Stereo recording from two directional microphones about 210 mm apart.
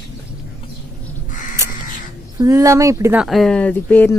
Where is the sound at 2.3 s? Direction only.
15° right (ahead or behind); by 4.1 s 5° left (ahead or behind).